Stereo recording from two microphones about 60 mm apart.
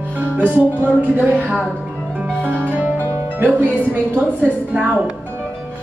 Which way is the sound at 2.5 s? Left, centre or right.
Left.